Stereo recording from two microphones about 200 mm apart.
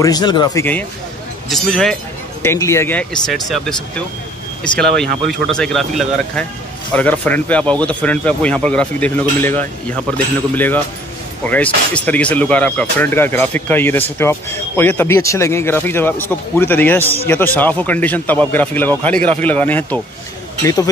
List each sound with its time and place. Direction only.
0.0 s speech: 20° left (ahead or behind)
1.5 s speech: centre (ahead or behind)
2.4 s speech: 15° left (ahead or behind)
4.7 s speech: 5° left (ahead or behind)